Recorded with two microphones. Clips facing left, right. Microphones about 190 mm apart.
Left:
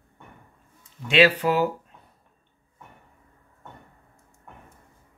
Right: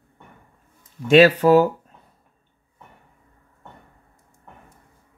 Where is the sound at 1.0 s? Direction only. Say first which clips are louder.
Right 7 dB; 45° right (ahead or behind).